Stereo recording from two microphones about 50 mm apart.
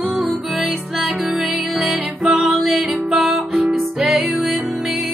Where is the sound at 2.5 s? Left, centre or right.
Centre.